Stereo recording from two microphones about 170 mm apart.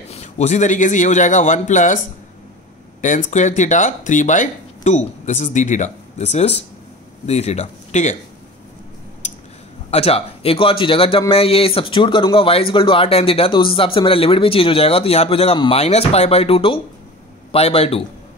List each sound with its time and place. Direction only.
0.1 s speech: 40° left (ahead or behind)
3.0 s speech: 50° left (ahead or behind)
9.8 s speech: 35° left (ahead or behind)